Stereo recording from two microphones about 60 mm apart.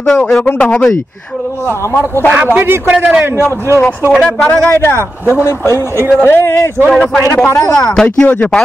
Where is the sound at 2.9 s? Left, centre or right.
Right.